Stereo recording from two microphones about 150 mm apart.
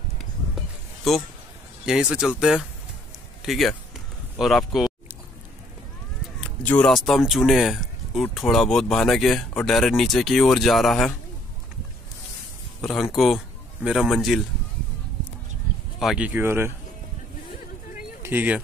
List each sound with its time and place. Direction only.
1.9 s speech: 5° right (ahead or behind)
3.4 s a sound: centre (ahead or behind)
6.4 s a sound: 10° left (ahead or behind)
6.9 s speech: centre (ahead or behind)
13.1 s speech: centre (ahead or behind)
16.0 s speech: centre (ahead or behind)
16.3 s speech: 15° right (ahead or behind)
18.2 s speech: 10° right (ahead or behind)